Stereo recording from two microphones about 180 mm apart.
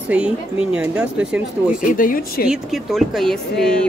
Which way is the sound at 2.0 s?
50° left (ahead or behind).